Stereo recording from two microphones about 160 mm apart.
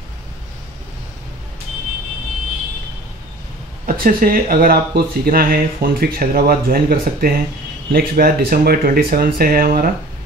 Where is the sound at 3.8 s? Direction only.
65° right (ahead or behind).